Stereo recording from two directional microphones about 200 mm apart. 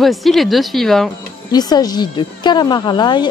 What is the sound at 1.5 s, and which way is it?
A woman's voice, 20° left (ahead or behind).